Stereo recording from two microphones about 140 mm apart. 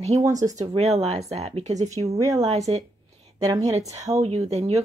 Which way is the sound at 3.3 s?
25° right (ahead or behind).